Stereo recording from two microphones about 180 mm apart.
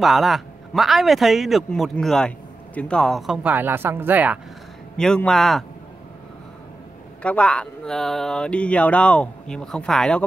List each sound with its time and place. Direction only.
0.0 s speech: centre (ahead or behind)
4.9 s speech: 5° left (ahead or behind)
7.2 s speech: 5° left (ahead or behind)